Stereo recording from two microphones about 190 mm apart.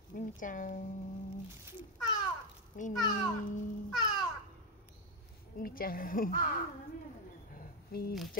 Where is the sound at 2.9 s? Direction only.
20° left (ahead or behind).